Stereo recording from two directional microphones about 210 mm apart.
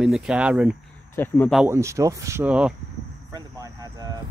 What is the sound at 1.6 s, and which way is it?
Speech, 15° right (ahead or behind).